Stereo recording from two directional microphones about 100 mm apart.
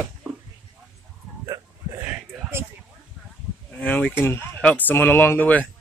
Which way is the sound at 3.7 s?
15° left (ahead or behind).